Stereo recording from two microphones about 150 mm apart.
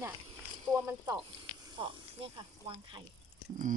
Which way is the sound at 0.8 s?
15° right (ahead or behind).